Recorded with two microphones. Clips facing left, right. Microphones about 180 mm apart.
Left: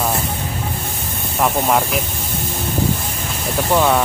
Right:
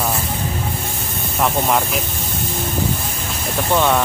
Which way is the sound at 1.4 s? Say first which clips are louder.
Left 1 dB; centre (ahead or behind).